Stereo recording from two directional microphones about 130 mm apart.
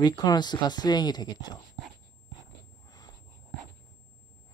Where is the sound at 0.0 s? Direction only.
30° left (ahead or behind).